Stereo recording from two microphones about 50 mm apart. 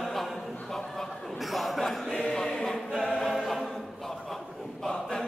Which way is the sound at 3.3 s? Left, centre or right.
Centre.